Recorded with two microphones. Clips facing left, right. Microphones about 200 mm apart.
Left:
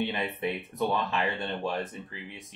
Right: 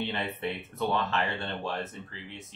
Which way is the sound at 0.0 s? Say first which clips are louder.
Left 2 dB; 15° left (ahead or behind).